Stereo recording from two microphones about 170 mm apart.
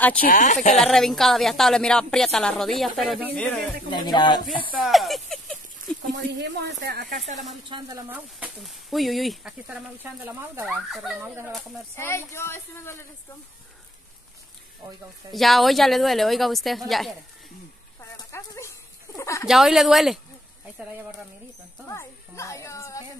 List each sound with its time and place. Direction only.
0.2 s speech: 50° left (ahead or behind)
0.7 s a woman's voice: centre (ahead or behind)
3.9 s speech: 25° left (ahead or behind)
4.8 s a sound: centre (ahead or behind)
6.1 s speech: 90° right
7.9 s speech: 10° right (ahead or behind)
8.5 s a woman's voice: centre (ahead or behind)
12.0 s speech: 15° left (ahead or behind)
15.3 s a woman's voice: centre (ahead or behind)
18.1 s a sound: 20° left (ahead or behind)
19.4 s a woman's voice: centre (ahead or behind)
21.8 s speech: 15° left (ahead or behind)